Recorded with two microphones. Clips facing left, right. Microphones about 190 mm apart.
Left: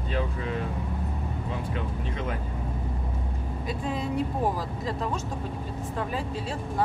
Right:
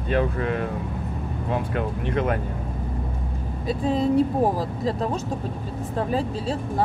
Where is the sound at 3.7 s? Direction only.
35° right (ahead or behind).